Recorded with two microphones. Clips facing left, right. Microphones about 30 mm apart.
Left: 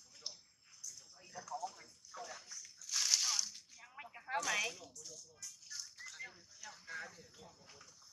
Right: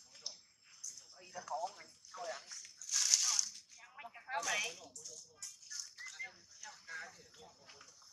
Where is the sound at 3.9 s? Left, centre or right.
Centre.